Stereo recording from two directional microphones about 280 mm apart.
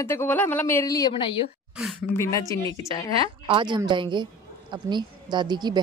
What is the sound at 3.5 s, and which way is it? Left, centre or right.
A woman's voice, centre.